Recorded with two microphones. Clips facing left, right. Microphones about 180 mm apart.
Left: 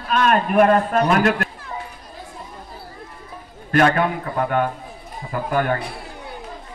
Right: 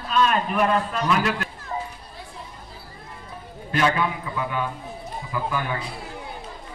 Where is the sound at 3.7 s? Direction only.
55° left (ahead or behind).